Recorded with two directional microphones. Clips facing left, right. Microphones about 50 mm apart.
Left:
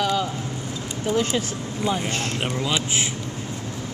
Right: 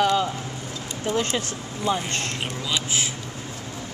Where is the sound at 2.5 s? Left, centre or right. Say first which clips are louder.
Left 3 dB; centre.